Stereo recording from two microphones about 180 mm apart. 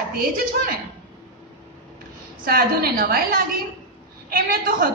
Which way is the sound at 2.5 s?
55° right (ahead or behind).